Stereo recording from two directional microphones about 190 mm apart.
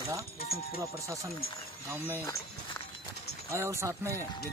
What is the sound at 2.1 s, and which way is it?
Speech, 15° left (ahead or behind).